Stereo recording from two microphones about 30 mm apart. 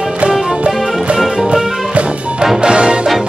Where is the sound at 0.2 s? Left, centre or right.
Right.